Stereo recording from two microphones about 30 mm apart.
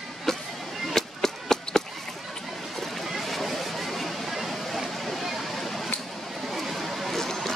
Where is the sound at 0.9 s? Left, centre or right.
Centre.